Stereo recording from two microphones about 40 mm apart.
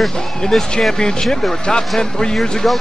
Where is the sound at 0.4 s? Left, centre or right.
Centre.